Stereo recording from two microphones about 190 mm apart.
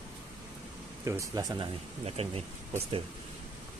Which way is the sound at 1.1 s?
20° right (ahead or behind).